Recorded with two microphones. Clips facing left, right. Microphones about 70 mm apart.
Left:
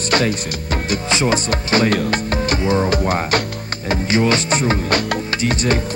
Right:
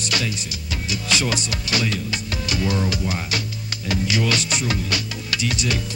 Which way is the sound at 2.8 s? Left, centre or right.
Left.